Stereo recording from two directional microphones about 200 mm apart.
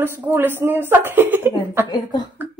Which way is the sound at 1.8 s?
20° left (ahead or behind).